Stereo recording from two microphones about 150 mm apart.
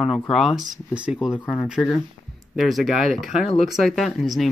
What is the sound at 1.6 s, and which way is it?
Speech, 5° right (ahead or behind).